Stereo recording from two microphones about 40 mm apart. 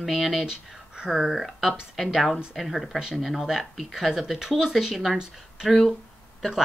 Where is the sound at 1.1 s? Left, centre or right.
Centre.